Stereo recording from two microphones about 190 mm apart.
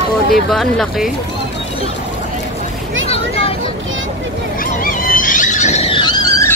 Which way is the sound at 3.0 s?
30° left (ahead or behind).